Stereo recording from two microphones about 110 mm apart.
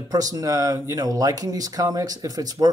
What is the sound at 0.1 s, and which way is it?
Speech, 35° right (ahead or behind).